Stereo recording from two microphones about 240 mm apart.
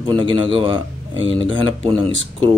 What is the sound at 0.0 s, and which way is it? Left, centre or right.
Speech, right.